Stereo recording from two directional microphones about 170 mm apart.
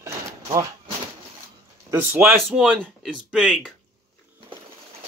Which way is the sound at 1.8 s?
10° right (ahead or behind).